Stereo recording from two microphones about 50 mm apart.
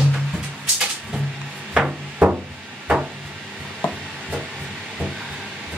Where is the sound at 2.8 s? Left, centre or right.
Centre.